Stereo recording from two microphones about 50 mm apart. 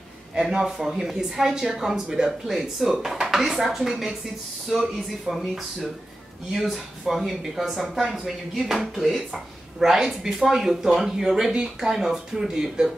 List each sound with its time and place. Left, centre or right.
0.3 s a sound: centre
0.6 s speech: centre
6.5 s speech: centre